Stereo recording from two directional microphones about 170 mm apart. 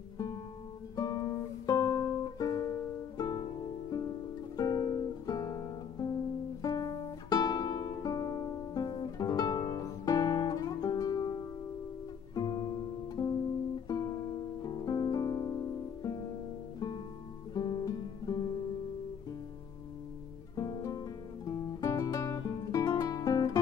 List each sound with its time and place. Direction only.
0.9 s music: 20° left (ahead or behind)
4.6 s guitar: 25° left (ahead or behind)
6.6 s music: 20° left (ahead or behind)
17.6 s music: 25° left (ahead or behind)
20.5 s guitar: 20° left (ahead or behind)